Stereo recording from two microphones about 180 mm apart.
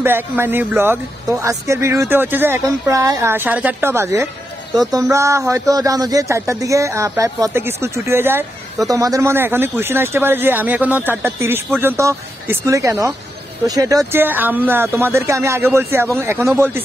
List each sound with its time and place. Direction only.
0.0 s speech: 10° right (ahead or behind)